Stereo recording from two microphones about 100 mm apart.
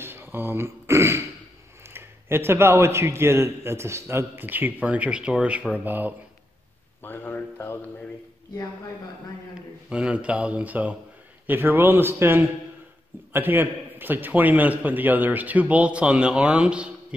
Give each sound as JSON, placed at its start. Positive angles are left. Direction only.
{"t": 0.0, "sound": "a man's voice", "side_deg": -20}
{"t": 7.0, "sound": "a man's voice", "side_deg": 20}
{"t": 9.8, "sound": "a man's voice", "side_deg": -10}